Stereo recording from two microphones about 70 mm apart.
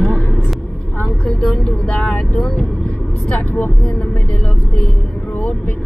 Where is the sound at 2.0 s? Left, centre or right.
Centre.